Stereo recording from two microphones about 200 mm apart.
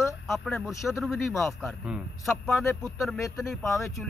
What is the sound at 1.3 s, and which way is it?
Speech, 15° left (ahead or behind).